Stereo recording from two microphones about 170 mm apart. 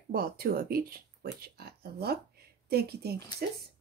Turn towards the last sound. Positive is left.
turn(degrees=-70)  # may be behind; listen again after turning